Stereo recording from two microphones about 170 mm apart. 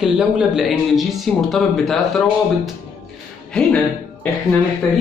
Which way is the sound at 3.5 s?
5° left (ahead or behind).